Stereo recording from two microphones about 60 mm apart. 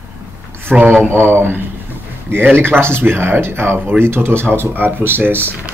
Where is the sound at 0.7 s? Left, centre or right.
Right.